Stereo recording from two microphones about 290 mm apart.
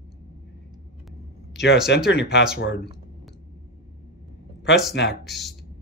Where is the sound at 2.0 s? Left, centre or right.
Left.